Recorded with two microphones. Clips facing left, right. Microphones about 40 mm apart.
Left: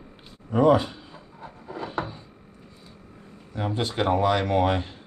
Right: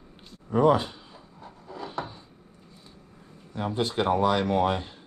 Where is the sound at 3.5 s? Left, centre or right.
Left.